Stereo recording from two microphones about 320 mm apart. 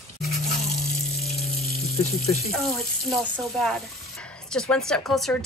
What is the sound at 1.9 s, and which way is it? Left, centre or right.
Speech, centre.